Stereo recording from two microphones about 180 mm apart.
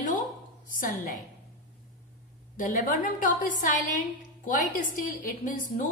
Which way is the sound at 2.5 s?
50° left (ahead or behind).